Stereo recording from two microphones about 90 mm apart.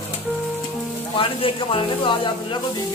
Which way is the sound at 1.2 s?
80° left.